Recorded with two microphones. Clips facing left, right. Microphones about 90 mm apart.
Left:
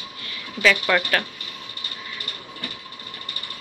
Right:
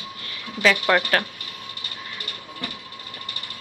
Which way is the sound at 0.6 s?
20° right (ahead or behind).